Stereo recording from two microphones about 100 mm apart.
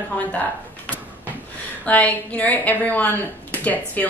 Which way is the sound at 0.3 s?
15° left (ahead or behind).